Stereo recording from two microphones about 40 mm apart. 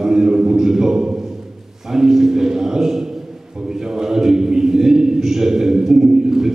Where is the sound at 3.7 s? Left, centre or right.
Centre.